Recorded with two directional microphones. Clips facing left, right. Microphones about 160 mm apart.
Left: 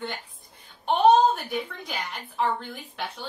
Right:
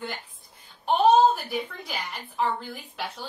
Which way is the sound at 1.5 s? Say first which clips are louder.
Even; 5° right (ahead or behind).